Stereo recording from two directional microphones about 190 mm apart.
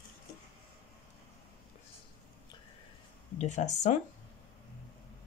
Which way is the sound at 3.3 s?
40° left (ahead or behind).